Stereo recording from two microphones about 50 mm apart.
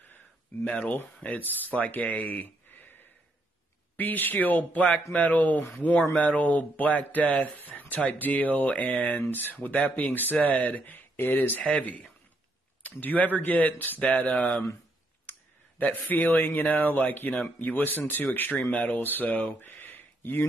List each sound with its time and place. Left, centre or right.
0.8 s speech: left
11.7 s speech: left
15.8 s speech: left
19.6 s a sound: left